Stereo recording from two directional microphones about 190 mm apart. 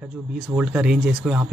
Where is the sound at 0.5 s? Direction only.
5° right (ahead or behind).